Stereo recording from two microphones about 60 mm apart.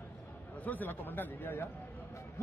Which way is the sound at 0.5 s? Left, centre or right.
Left.